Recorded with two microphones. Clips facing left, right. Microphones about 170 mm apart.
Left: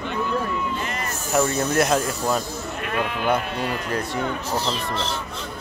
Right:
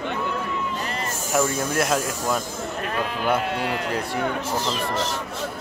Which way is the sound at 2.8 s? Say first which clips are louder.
Left 2 dB; 35° right (ahead or behind).